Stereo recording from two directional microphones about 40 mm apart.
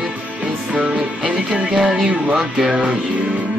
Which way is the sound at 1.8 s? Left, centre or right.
Centre.